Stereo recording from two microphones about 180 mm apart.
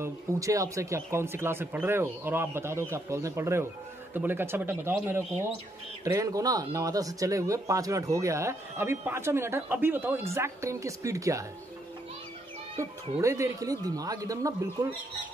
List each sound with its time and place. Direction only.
0.0 s speech: 15° right (ahead or behind)
13.2 s speech: 15° right (ahead or behind)